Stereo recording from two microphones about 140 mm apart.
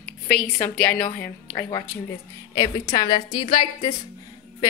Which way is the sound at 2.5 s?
30° left (ahead or behind).